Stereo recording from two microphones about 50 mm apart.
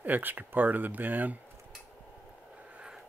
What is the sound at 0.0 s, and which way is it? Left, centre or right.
Speech, right.